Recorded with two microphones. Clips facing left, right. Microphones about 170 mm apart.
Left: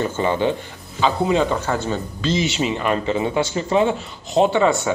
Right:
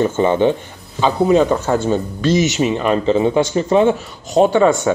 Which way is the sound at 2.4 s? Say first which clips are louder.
Right 5 dB; 30° left (ahead or behind).